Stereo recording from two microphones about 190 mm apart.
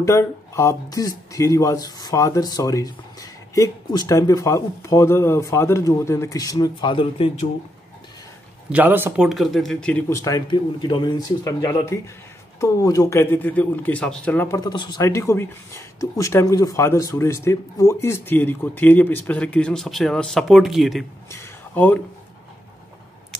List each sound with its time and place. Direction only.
0.0 s speech: 15° left (ahead or behind)
8.6 s speech: 10° right (ahead or behind); by 14.6 s 10° left (ahead or behind)
14.6 s speech: 20° left (ahead or behind); by 21.0 s centre (ahead or behind)
21.3 s speech: 10° left (ahead or behind)